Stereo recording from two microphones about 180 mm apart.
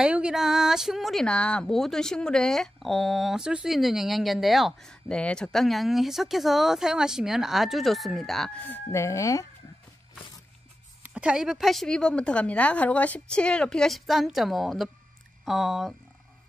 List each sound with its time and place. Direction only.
0.0 s speech: 5° right (ahead or behind); by 9.5 s 20° left (ahead or behind)
11.0 s speech: 5° right (ahead or behind)